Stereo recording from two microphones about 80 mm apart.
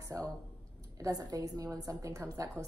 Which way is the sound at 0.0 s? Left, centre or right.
Right.